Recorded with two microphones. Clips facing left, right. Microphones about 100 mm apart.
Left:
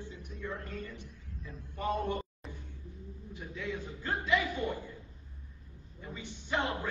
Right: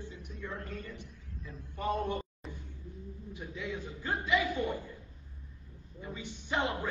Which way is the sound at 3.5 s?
15° right (ahead or behind).